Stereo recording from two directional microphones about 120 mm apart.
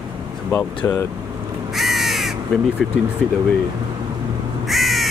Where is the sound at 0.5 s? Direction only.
15° left (ahead or behind).